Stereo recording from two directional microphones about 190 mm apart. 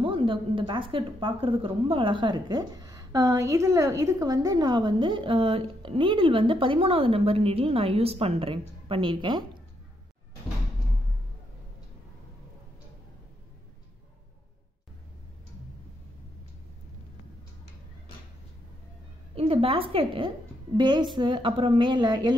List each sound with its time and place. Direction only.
0.0 s a woman's voice: 30° right (ahead or behind)
19.3 s a woman's voice: 30° right (ahead or behind)